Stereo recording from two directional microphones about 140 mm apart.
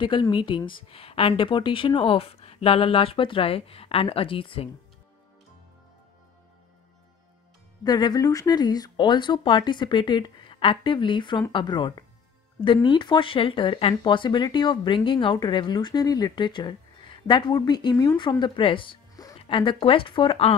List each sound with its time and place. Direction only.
0.0 s speech: 35° left (ahead or behind)
7.8 s speech: 30° left (ahead or behind)